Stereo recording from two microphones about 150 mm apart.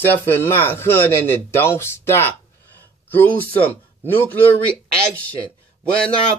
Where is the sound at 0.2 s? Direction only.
15° left (ahead or behind).